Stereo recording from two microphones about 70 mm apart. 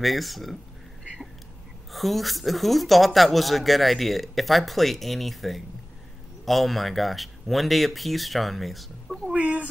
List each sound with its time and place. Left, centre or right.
0.0 s speech: centre
1.9 s speech: centre
9.3 s speech: centre